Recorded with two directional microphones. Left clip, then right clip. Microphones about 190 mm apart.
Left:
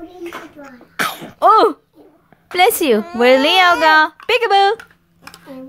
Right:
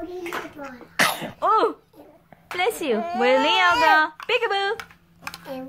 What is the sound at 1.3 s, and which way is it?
A woman's voice, 40° left (ahead or behind).